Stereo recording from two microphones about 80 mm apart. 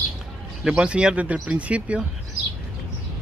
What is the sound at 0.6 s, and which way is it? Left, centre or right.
Speech, centre.